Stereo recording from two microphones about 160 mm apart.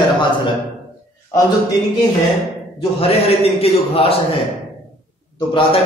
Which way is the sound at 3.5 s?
35° left (ahead or behind).